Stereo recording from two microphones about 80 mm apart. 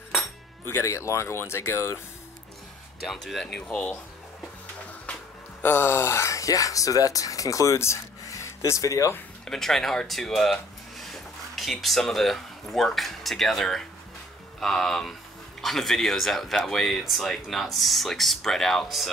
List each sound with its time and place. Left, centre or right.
0.7 s speech: left
3.0 s speech: centre
5.6 s speech: left
9.4 s speech: centre